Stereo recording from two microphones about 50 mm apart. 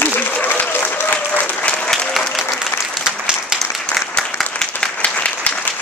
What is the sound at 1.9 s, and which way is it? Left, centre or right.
Applause, centre.